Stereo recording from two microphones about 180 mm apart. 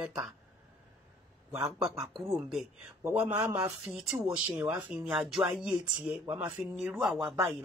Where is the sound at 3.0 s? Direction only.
10° right (ahead or behind).